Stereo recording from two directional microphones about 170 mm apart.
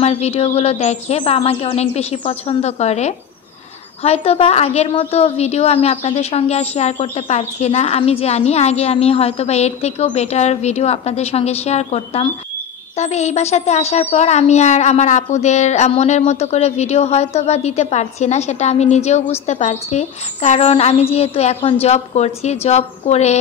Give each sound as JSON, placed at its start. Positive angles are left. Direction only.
{"t": 0.0, "sound": "speech", "side_deg": 35}